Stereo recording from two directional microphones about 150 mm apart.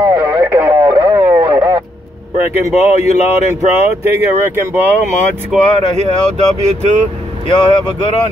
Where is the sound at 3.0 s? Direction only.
50° left (ahead or behind).